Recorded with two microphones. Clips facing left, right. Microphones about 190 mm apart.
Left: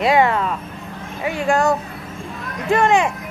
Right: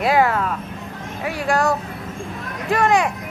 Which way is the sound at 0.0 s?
Centre (ahead or behind).